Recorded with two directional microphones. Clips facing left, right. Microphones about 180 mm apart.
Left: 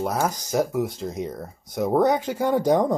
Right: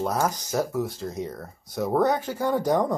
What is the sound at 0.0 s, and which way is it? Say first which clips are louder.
Speech: left 1 dB; 10° left (ahead or behind).